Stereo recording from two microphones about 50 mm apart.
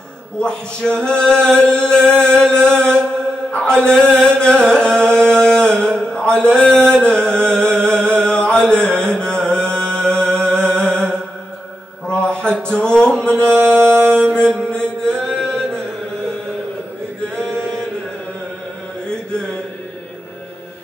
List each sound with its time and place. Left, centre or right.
0.4 s male singing: centre
2.2 s music: centre
3.5 s mantra: centre
3.9 s male singing: centre
5.2 s mantra: centre
7.2 s music: centre
7.7 s chant: centre
8.9 s music: centre
12.1 s a sound: centre
14.3 s mantra: left
17.4 s chant: centre
19.0 s mantra: centre